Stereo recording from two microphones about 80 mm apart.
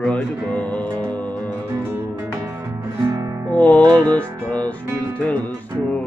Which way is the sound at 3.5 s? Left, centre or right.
Centre.